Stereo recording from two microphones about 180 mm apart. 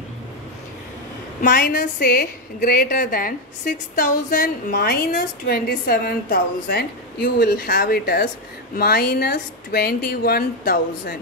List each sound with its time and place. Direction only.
1.4 s a woman's voice: 50° left (ahead or behind)